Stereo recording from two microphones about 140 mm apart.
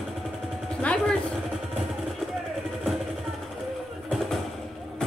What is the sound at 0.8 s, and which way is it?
Music, 10° left (ahead or behind).